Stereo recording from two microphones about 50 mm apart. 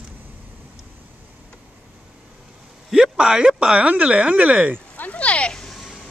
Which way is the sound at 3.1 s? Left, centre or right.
Centre.